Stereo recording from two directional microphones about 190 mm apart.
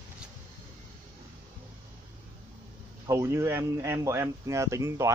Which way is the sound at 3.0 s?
15° right (ahead or behind).